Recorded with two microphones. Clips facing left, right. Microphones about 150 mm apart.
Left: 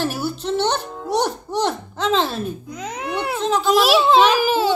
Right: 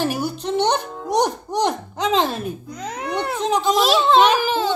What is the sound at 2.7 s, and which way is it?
Babbling, 5° left (ahead or behind).